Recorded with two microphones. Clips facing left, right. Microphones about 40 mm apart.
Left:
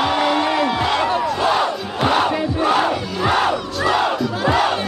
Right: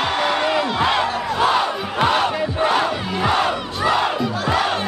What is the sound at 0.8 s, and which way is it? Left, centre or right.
Battle cry, centre.